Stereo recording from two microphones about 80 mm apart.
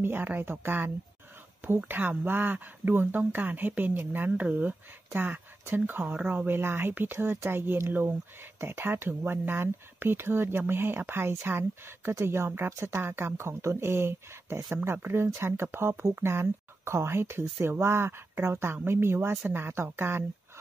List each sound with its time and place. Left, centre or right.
0.0 s speech: right